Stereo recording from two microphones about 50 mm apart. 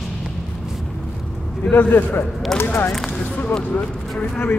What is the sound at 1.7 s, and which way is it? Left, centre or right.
Speech, left.